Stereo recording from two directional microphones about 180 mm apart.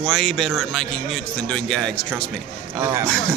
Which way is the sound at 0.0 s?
Centre (ahead or behind).